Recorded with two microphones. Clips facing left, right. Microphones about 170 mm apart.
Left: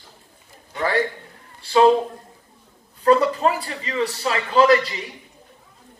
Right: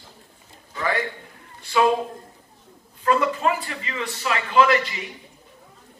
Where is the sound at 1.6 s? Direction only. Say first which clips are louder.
Left 5 dB; 30° left (ahead or behind).